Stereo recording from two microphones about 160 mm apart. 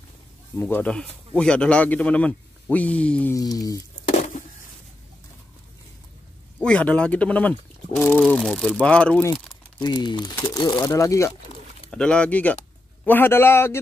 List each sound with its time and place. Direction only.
0.6 s speech: 10° left (ahead or behind)
3.3 s speech: 25° left (ahead or behind)
6.6 s speech: 5° left (ahead or behind)
9.8 s speech: 25° left (ahead or behind)
10.3 s speech: 15° left (ahead or behind)
11.9 s speech: 5° left (ahead or behind)